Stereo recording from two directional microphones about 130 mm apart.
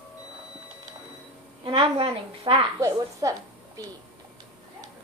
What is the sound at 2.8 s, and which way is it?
Speech, 25° right (ahead or behind).